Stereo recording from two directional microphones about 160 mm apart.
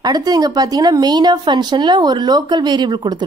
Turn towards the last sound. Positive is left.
turn(degrees=-30)  # may be behind; listen again after turning